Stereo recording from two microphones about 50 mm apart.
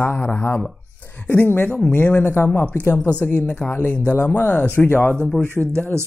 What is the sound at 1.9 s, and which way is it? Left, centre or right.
Speech, left.